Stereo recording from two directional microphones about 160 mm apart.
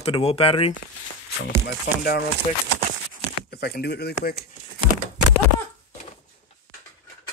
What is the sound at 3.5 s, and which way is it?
Speech, 90° left.